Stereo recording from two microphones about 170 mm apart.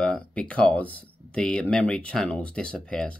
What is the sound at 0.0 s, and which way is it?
Speech, 5° left (ahead or behind).